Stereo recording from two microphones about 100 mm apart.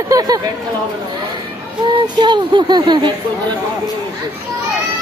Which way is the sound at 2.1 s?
50° right (ahead or behind).